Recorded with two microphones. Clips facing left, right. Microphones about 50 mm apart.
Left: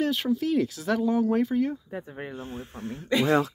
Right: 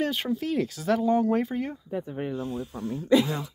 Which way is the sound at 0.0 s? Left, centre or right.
Centre.